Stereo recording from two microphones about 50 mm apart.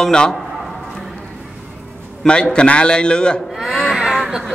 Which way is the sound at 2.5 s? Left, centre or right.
Left.